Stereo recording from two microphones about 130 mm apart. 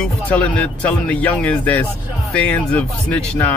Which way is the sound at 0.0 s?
10° left (ahead or behind).